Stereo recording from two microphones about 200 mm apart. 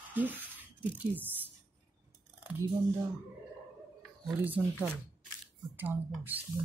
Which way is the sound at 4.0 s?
5° right (ahead or behind).